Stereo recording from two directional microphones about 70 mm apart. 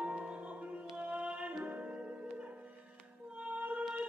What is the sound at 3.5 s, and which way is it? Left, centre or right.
Music, right.